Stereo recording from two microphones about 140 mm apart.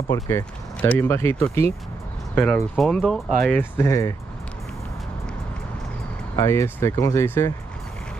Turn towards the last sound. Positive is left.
turn(degrees=15)  # may be behind; listen again after turning